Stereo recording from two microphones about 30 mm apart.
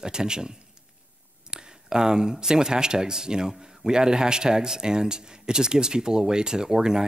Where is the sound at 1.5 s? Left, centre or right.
Right.